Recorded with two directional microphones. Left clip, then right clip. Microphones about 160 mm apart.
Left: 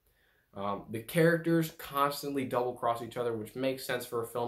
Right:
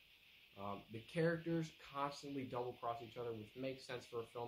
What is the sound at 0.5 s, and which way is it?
Speech, 15° right (ahead or behind).